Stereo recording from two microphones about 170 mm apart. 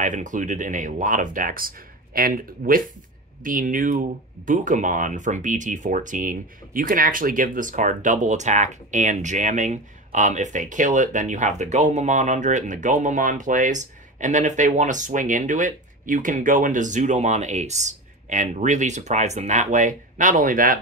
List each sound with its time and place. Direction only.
0.0 s speech: 45° right (ahead or behind)